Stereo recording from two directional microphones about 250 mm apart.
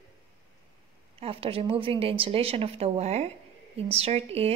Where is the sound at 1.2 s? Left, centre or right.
Right.